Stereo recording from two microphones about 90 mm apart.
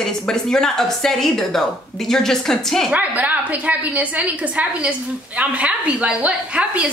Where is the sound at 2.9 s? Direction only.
15° right (ahead or behind).